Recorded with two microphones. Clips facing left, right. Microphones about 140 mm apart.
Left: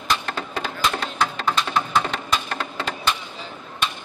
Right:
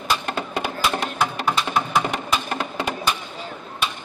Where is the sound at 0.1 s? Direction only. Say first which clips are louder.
Right 1 dB; 10° right (ahead or behind).